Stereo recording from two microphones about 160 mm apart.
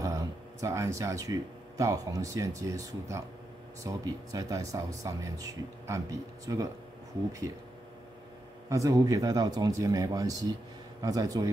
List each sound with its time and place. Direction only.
0.0 s speech: 20° right (ahead or behind)
8.6 s speech: 20° right (ahead or behind)